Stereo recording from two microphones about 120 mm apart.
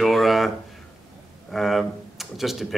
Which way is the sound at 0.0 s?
Centre (ahead or behind).